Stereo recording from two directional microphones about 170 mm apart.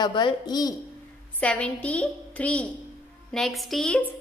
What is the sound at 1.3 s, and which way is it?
A woman's voice, 5° left (ahead or behind).